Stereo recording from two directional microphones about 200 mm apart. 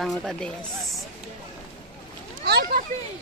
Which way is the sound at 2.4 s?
50° right (ahead or behind).